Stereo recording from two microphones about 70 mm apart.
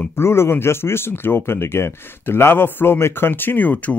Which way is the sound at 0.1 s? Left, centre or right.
Left.